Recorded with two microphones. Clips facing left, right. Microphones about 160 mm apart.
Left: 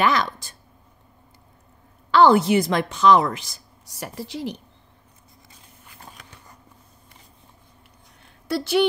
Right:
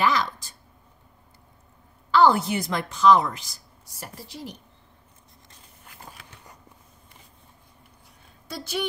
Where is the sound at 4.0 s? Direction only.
90° left.